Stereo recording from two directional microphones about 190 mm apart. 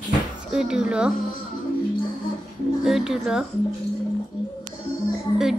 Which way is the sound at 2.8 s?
Centre (ahead or behind).